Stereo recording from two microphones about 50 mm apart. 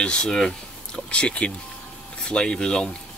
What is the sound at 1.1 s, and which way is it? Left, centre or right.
Speech, left.